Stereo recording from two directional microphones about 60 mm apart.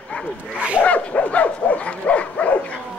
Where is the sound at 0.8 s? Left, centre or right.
Left.